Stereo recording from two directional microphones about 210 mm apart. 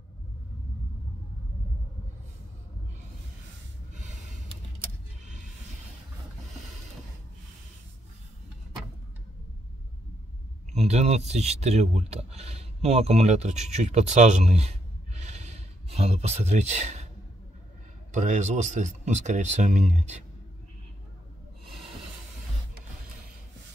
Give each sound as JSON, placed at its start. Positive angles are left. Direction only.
{"t": 10.7, "sound": "speech", "side_deg": -30}
{"t": 18.1, "sound": "speech", "side_deg": -35}